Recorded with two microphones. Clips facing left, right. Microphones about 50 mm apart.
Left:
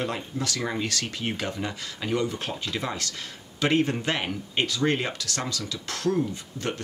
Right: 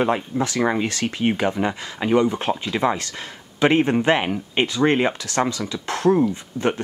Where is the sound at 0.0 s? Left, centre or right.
Right.